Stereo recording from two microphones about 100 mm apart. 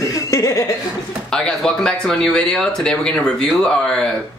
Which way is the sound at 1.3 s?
5° left (ahead or behind).